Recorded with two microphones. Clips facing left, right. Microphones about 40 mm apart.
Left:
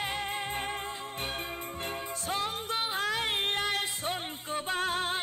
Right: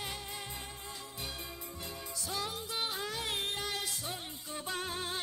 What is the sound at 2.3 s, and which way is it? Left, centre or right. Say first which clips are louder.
Music: left 6 dB; left.